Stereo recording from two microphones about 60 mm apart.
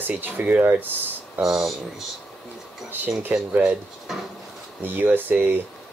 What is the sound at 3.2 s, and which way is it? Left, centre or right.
Speech, right.